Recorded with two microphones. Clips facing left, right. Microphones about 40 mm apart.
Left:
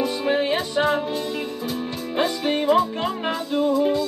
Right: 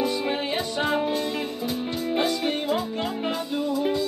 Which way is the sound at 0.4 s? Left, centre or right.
Left.